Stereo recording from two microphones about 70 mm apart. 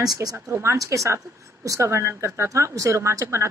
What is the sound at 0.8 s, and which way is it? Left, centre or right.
Speech, right.